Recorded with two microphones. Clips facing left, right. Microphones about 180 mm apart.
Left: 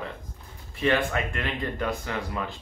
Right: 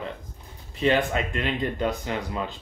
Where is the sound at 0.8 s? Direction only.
20° right (ahead or behind).